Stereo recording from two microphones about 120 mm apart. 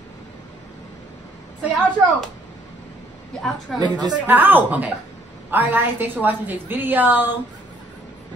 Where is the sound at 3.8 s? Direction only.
35° right (ahead or behind).